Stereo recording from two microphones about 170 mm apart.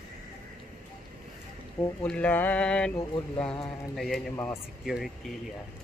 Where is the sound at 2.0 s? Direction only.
10° left (ahead or behind).